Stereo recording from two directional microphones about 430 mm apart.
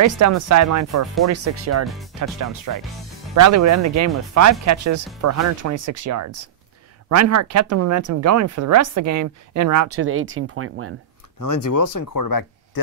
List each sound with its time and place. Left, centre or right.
0.0 s speech: right
2.1 s speech: right
9.9 s speech: right
11.3 s speech: left